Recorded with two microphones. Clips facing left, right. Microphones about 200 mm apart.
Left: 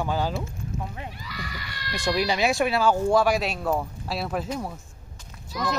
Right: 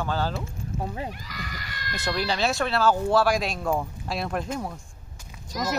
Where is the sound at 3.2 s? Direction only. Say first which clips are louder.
Left 1 dB; 10° left (ahead or behind).